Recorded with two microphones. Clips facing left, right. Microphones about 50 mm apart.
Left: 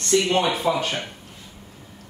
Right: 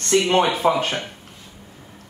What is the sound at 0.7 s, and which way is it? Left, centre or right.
Speech, centre.